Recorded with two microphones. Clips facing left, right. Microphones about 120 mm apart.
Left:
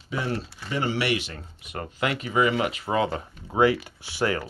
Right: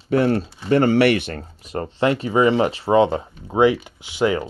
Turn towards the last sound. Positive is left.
turn(degrees=-20)  # may be behind; listen again after turning